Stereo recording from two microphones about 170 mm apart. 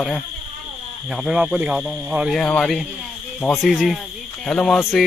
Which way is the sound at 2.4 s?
5° left (ahead or behind).